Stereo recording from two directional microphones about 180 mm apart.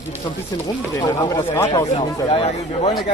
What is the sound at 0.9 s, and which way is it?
Speech, 20° left (ahead or behind).